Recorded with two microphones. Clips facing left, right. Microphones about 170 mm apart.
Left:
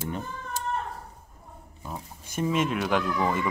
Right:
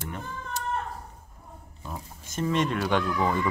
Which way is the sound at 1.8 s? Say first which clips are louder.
Left 1 dB; 5° left (ahead or behind).